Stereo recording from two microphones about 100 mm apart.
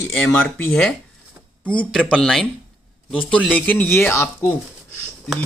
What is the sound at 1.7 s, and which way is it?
Speech, 10° left (ahead or behind).